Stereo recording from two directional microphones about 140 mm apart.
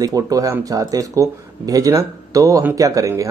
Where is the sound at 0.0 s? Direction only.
25° right (ahead or behind).